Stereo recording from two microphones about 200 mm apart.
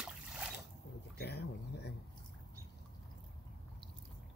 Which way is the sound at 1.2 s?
55° left (ahead or behind).